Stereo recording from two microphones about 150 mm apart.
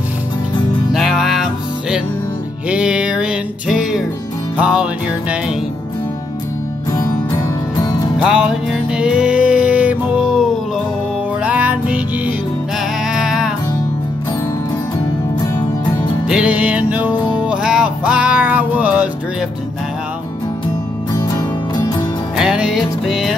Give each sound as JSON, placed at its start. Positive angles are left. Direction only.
{"t": 0.9, "sound": "music", "side_deg": 0}
{"t": 6.9, "sound": "music", "side_deg": 25}
{"t": 8.2, "sound": "music", "side_deg": -5}
{"t": 11.4, "sound": "music", "side_deg": -10}
{"t": 16.3, "sound": "music", "side_deg": -10}
{"t": 22.4, "sound": "music", "side_deg": -5}